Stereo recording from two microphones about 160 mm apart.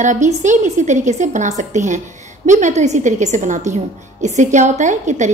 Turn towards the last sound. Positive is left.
turn(degrees=-50)  # may be behind; listen again after turning